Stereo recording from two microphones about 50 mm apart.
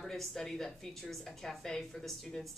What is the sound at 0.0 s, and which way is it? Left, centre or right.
Speech, centre.